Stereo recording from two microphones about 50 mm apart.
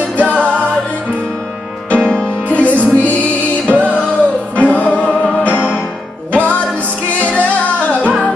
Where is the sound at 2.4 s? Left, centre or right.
Left.